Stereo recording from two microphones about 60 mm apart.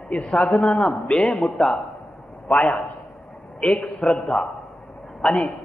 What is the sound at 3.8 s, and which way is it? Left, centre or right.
A man's voice, centre.